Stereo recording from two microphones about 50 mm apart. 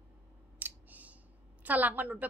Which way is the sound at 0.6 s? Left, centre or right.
Right.